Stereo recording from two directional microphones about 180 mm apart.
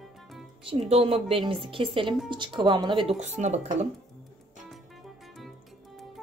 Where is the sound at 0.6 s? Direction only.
35° right (ahead or behind).